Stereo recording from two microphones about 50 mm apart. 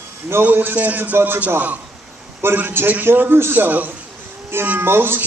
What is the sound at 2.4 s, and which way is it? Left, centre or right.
A man's voice, right.